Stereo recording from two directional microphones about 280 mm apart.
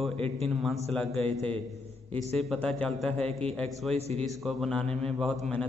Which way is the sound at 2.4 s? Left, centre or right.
Centre.